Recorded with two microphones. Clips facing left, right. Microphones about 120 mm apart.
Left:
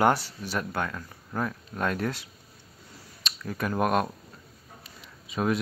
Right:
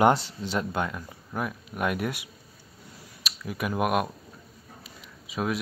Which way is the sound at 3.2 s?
10° right (ahead or behind).